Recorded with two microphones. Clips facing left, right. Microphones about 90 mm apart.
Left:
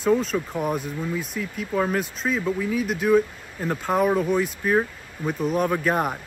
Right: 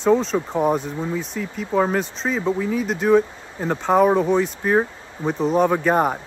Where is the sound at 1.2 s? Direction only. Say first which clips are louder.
Right 2 dB; 5° left (ahead or behind).